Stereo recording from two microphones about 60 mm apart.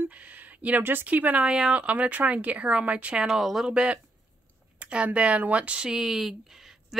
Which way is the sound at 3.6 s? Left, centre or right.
Centre.